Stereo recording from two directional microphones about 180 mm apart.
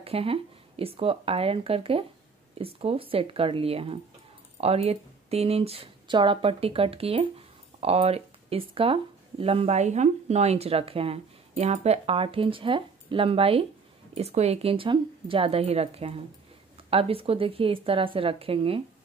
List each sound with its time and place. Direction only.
0.0 s speech: 30° right (ahead or behind)